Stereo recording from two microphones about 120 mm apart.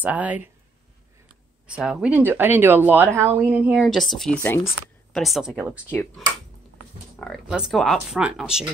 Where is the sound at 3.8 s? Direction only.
Centre (ahead or behind).